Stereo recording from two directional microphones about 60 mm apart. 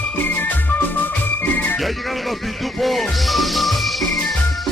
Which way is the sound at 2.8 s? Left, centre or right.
Centre.